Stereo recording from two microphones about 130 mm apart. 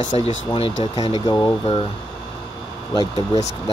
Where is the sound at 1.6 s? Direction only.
45° left (ahead or behind).